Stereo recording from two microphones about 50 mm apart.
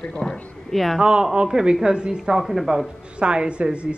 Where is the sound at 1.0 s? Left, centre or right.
Centre.